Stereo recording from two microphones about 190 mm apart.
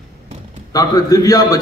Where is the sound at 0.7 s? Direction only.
20° left (ahead or behind).